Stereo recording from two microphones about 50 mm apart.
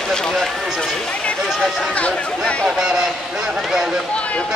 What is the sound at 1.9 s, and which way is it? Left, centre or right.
Speech, left.